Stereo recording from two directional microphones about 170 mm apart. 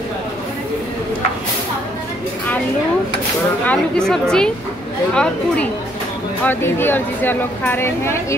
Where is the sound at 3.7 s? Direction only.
5° left (ahead or behind).